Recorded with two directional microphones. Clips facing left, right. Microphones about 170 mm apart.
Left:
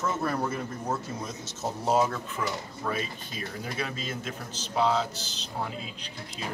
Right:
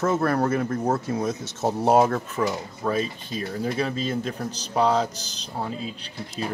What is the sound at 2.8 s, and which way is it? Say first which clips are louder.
Speech: right 7 dB; 35° right (ahead or behind).